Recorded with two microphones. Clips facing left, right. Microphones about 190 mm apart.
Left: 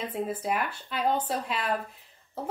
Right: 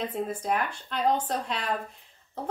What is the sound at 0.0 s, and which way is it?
Speech, 5° left (ahead or behind).